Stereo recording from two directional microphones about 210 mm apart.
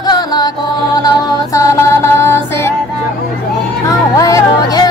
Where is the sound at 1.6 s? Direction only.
15° left (ahead or behind).